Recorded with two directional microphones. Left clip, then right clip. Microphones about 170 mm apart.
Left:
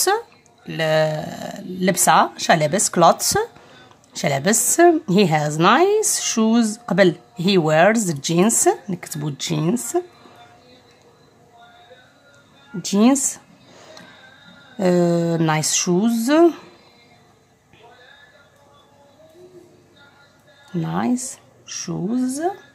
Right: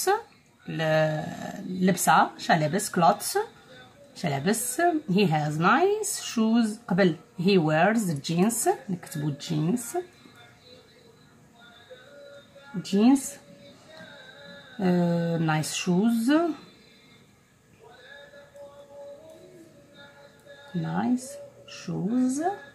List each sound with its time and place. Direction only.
0.7 s a woman's voice: 35° left (ahead or behind)
12.8 s speech: 45° left (ahead or behind)
14.8 s speech: 45° left (ahead or behind)
20.9 s speech: 45° left (ahead or behind); by 22.5 s 25° left (ahead or behind)